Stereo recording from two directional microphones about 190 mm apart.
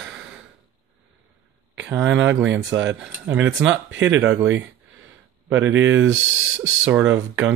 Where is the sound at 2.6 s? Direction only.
75° right (ahead or behind).